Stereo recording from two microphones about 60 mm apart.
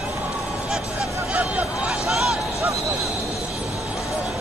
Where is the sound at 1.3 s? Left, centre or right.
Right.